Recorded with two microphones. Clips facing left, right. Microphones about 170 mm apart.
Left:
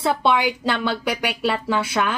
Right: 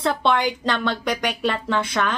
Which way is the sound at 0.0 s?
5° left (ahead or behind).